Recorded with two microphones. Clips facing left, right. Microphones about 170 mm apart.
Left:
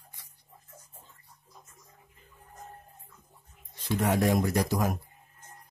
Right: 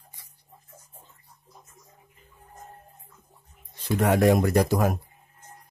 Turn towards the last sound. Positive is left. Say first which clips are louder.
# right 5 dB
turn(degrees=-65)  # may be behind; listen again after turning